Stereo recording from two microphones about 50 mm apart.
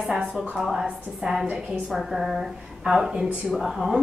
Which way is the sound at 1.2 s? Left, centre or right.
Centre.